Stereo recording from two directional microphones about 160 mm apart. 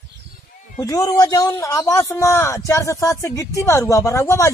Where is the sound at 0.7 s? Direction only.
20° left (ahead or behind).